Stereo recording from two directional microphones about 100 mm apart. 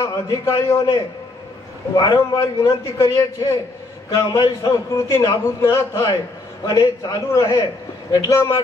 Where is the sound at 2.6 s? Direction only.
35° left (ahead or behind).